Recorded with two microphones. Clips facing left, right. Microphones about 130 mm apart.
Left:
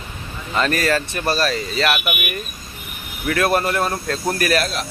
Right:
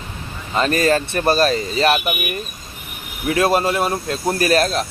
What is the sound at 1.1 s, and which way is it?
Speech, 45° right (ahead or behind).